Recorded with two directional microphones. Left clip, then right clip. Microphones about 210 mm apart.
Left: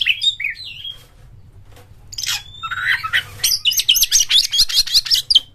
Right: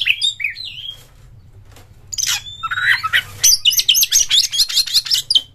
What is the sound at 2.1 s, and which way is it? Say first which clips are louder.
Bird: right 3 dB; 20° right (ahead or behind).